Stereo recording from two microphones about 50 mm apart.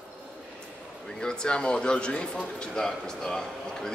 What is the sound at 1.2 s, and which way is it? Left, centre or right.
A man's voice, centre.